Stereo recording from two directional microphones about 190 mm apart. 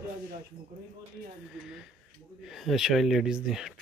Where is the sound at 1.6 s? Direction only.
5° right (ahead or behind).